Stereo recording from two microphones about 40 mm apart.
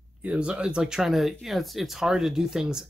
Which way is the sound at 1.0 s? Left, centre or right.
Centre.